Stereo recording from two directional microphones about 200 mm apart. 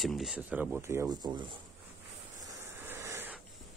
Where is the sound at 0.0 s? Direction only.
Centre (ahead or behind); by 1.4 s 20° right (ahead or behind).